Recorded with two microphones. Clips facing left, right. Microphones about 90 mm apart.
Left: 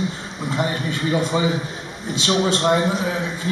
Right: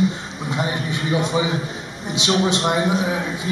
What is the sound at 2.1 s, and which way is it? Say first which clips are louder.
Speech: even; 15° right (ahead or behind).